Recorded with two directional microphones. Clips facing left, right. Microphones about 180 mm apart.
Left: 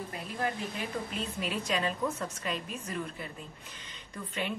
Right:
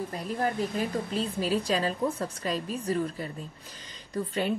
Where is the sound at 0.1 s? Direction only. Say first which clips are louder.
Right 3 dB; 35° right (ahead or behind).